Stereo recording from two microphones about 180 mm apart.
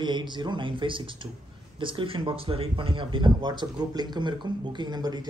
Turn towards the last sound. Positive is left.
turn(degrees=-20)  # may be behind; listen again after turning